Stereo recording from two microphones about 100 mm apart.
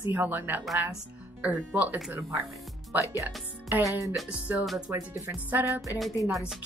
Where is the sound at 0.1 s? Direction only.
20° right (ahead or behind).